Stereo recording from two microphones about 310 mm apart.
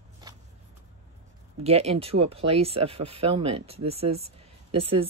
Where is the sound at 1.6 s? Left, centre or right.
Centre.